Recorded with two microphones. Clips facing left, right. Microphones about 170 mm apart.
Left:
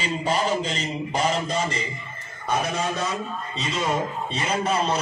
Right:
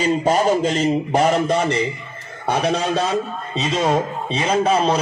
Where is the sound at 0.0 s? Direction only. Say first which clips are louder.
Right 8 dB; 45° right (ahead or behind); by 1.8 s 60° right (ahead or behind).